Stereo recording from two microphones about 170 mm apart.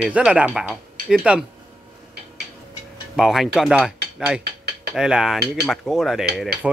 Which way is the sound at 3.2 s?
Centre (ahead or behind).